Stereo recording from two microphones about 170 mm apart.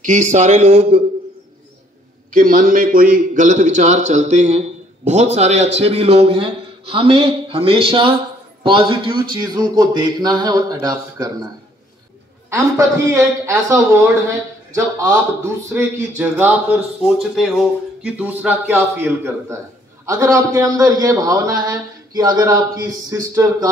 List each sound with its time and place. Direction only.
0.0 s speech: 45° right (ahead or behind)
2.3 s a man's voice: 55° right (ahead or behind); by 11.3 s 20° right (ahead or behind)
12.4 s speech: 15° right (ahead or behind)
17.0 s a man's voice: centre (ahead or behind); by 23.7 s 20° right (ahead or behind)